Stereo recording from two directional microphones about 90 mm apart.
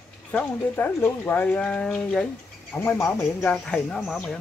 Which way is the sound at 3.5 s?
10° left (ahead or behind).